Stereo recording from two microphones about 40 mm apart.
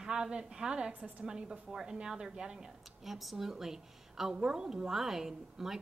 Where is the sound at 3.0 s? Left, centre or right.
Centre.